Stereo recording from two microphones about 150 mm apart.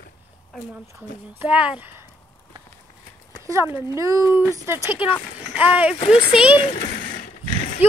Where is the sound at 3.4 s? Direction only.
15° right (ahead or behind).